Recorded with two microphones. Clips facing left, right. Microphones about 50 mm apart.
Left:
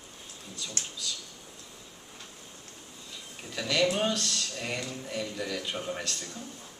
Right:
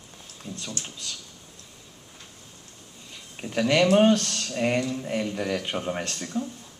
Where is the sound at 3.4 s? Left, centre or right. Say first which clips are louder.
Right 6 dB; right.